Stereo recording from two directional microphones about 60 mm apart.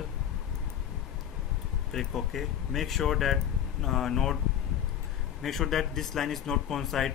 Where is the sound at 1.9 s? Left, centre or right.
Centre.